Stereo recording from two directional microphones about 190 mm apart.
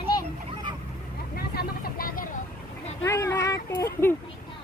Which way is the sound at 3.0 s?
15° left (ahead or behind).